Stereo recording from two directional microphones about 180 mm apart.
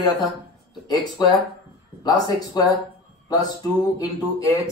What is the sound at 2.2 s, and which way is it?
A man's voice, 20° left (ahead or behind).